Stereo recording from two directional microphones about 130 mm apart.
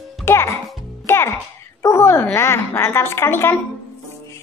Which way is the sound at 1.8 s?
20° left (ahead or behind).